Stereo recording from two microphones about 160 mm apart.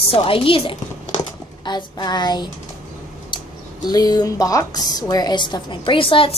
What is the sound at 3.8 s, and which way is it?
Speech, 25° left (ahead or behind).